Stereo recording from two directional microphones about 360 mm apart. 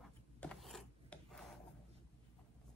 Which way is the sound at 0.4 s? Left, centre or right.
Centre.